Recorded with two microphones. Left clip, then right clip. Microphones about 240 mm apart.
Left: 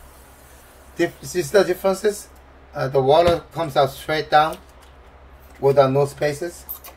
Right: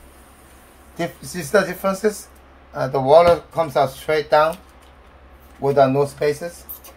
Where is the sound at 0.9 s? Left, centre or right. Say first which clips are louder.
Left 5 dB; centre.